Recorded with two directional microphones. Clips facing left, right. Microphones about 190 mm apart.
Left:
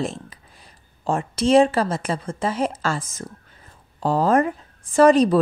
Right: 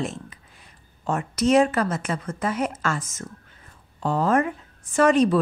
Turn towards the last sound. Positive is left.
turn(degrees=35)  # may be behind; listen again after turning